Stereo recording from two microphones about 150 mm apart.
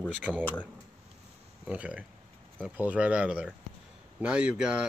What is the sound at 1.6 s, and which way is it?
Speech, 10° right (ahead or behind).